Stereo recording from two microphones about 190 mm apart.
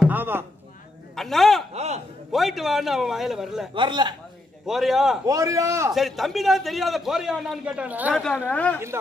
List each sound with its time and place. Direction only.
0.0 s a sound: 10° right (ahead or behind)
1.1 s a man's voice: centre (ahead or behind)
1.7 s a man's voice: 35° right (ahead or behind)
2.3 s a man's voice: centre (ahead or behind)
3.7 s a man's voice: 25° right (ahead or behind)
4.6 s a man's voice: centre (ahead or behind)
5.2 s a man's voice: 15° right (ahead or behind)
5.9 s a man's voice: centre (ahead or behind)
8.1 s a woman's voice: 5° left (ahead or behind)